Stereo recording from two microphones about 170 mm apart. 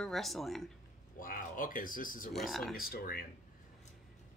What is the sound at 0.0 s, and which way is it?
Speech, centre (ahead or behind).